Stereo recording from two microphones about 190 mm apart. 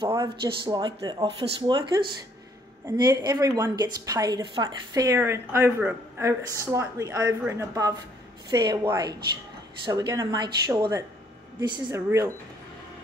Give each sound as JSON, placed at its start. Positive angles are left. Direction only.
{"t": 0.5, "sound": "a woman's voice", "side_deg": -25}